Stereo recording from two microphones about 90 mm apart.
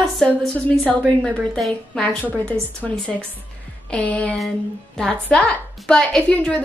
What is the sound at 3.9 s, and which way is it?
A woman's voice, 15° left (ahead or behind).